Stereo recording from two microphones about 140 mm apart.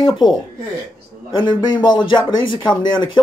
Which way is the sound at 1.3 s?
35° left (ahead or behind).